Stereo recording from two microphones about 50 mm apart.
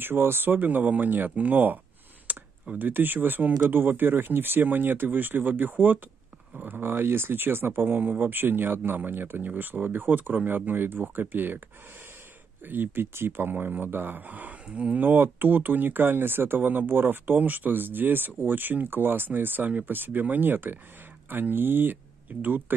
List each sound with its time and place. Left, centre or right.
0.0 s speech: right
2.3 s computer keyboard: right
2.8 s speech: right
12.6 s speech: right
15.0 s speech: right